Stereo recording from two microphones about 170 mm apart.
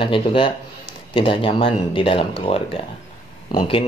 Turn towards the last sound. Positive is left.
turn(degrees=30)  # may be behind; listen again after turning